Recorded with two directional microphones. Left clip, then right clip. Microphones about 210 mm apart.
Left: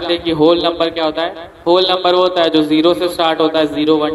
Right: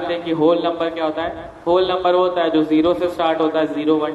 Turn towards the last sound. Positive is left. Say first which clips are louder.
# left 4 dB
turn(degrees=50)  # may be behind; listen again after turning